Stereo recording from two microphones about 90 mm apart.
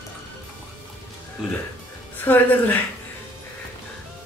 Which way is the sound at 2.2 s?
20° left (ahead or behind).